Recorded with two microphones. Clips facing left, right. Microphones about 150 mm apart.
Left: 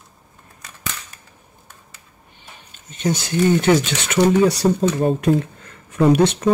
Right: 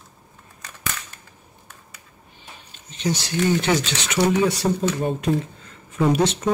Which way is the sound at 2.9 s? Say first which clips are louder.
Left 3 dB; 50° left (ahead or behind).